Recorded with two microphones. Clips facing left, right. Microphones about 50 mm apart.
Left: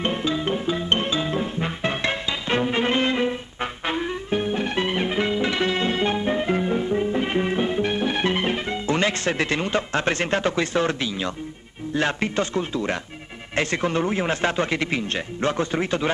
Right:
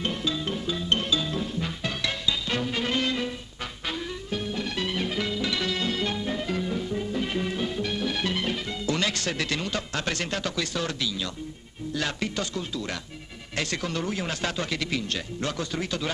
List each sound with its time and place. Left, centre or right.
0.0 s music: left
11.9 s a man's voice: left